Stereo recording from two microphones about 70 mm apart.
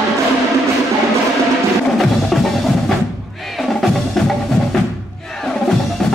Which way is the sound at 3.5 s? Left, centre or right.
Centre.